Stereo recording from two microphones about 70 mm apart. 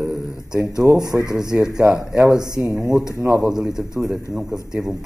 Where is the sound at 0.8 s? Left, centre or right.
Right.